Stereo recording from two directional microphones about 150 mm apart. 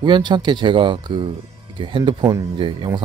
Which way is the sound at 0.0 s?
30° right (ahead or behind).